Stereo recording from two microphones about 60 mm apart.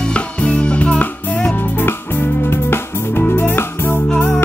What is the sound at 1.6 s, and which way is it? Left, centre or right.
Music, left.